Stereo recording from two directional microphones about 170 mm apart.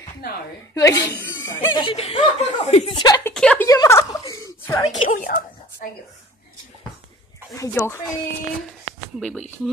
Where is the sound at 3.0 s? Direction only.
25° left (ahead or behind).